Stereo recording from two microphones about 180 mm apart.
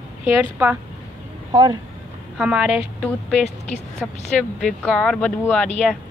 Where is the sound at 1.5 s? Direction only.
25° right (ahead or behind).